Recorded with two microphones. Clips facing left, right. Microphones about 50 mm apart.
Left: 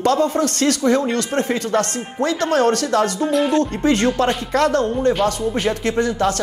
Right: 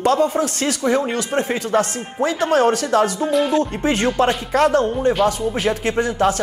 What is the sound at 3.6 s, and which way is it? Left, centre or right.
Speech, centre.